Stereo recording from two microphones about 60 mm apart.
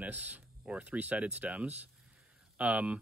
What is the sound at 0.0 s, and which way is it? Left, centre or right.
Speech, right.